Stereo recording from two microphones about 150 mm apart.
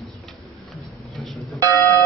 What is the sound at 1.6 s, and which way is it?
Music, 20° right (ahead or behind).